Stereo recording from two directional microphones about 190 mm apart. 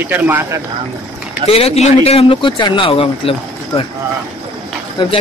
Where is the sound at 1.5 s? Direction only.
30° left (ahead or behind).